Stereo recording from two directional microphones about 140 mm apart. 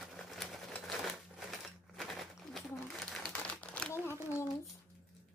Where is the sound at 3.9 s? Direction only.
20° left (ahead or behind).